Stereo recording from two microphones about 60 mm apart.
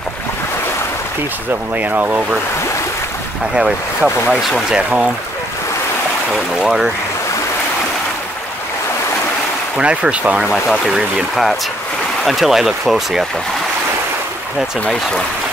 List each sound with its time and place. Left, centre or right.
1.8 s speech: right
3.5 s speech: centre
4.4 s speech: centre
4.6 s speech: centre
6.6 s speech: centre
9.8 s speech: centre
10.5 s speech: centre
12.3 s speech: centre